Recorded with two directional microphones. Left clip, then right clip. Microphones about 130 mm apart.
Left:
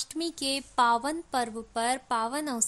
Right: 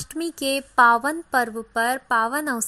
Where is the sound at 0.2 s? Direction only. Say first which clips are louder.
Right 7 dB; 20° right (ahead or behind).